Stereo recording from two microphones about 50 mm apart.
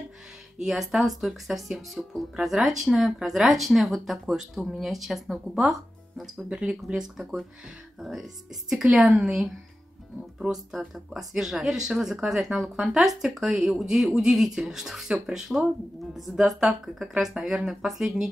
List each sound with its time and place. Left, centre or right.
0.6 s speech: centre
6.3 s speech: centre
11.1 s speech: centre